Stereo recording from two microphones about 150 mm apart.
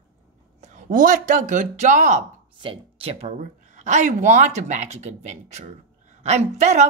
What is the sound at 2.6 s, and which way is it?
Speech, 40° right (ahead or behind).